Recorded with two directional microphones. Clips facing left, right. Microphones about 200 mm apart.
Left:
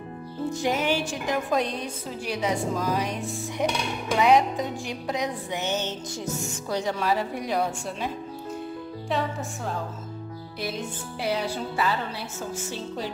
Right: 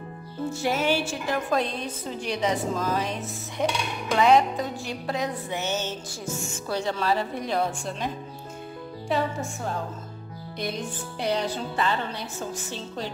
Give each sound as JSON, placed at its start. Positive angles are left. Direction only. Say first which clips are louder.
{"t": 0.5, "sound": "music", "louder": "even", "side_deg": 15}
{"t": 9.1, "sound": "speech", "louder": "right 2 dB", "side_deg": 0}